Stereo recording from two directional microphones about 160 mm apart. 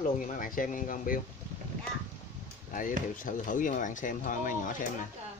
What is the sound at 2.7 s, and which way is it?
Speech, 55° left (ahead or behind).